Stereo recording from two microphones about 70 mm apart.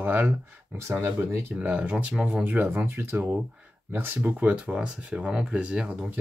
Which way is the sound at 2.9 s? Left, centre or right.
Right.